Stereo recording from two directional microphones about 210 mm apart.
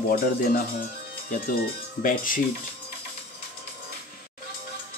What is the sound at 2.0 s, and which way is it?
Speech, 40° left (ahead or behind).